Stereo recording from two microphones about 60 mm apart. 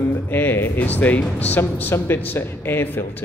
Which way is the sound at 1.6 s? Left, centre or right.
Left.